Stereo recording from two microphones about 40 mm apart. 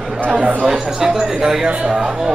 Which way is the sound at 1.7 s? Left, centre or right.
Right.